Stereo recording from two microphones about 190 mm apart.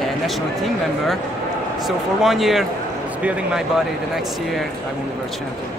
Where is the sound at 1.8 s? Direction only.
Centre (ahead or behind).